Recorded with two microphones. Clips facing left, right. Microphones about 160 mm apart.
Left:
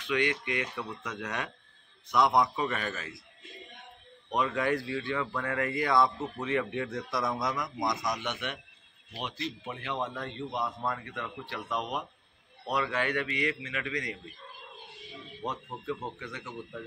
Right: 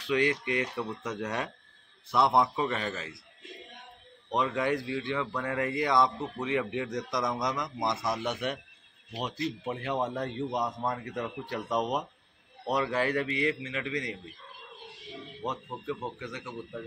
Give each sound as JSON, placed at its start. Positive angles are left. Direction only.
{"t": 0.0, "sound": "a man's voice", "side_deg": -35}
{"t": 4.3, "sound": "a man's voice", "side_deg": -20}
{"t": 9.7, "sound": "a man's voice", "side_deg": -40}
{"t": 15.4, "sound": "speech", "side_deg": -15}